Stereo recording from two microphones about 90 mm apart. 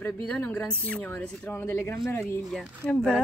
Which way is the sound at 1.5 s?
30° left (ahead or behind).